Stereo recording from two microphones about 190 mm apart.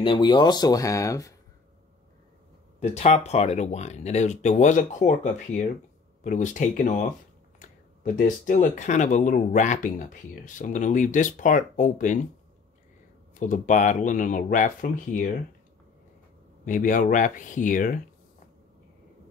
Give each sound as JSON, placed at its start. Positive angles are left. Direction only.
{"t": 0.0, "sound": "speech", "side_deg": 25}
{"t": 2.8, "sound": "speech", "side_deg": 35}
{"t": 13.4, "sound": "speech", "side_deg": 40}
{"t": 16.6, "sound": "speech", "side_deg": 45}